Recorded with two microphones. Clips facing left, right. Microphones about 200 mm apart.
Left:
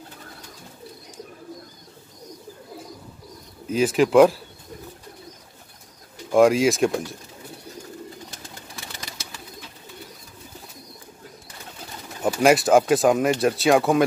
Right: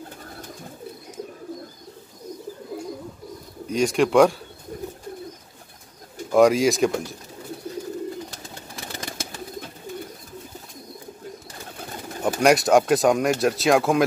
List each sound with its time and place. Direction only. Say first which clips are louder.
3.6 s speech: left 1 dB; 5° left (ahead or behind)
6.3 s speech: even; centre (ahead or behind)
8.9 s bird: right 6 dB; 50° right (ahead or behind)
12.2 s speech: left 1 dB; centre (ahead or behind)